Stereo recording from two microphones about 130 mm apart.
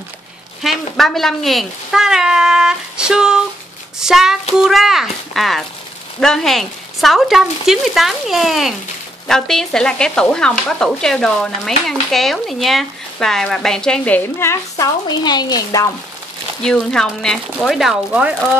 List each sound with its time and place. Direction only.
0.6 s speech: centre (ahead or behind); by 14.9 s 20° left (ahead or behind)
15.0 s speech: 30° left (ahead or behind)
16.6 s speech: 5° left (ahead or behind)